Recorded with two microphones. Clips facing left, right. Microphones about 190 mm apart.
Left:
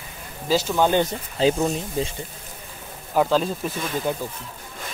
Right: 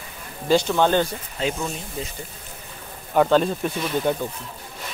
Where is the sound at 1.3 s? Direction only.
30° left (ahead or behind).